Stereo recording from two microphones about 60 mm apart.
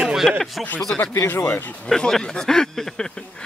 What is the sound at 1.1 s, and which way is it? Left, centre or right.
Speech, left.